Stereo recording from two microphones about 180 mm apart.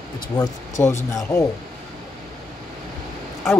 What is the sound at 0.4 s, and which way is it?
Speech, 15° left (ahead or behind).